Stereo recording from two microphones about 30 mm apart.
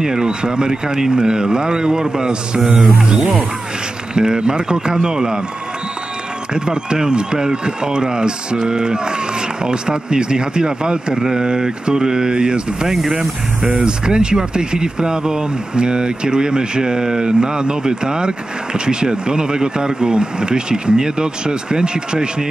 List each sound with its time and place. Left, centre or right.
0.0 s speech: right
4.1 s speech: right
6.5 s speech: right
13.7 s speech: right